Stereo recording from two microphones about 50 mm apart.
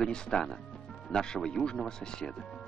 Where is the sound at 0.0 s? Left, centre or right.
Centre.